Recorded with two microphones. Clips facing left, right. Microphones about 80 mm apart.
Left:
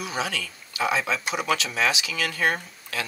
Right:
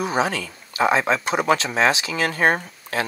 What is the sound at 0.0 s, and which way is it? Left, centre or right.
Speech, right.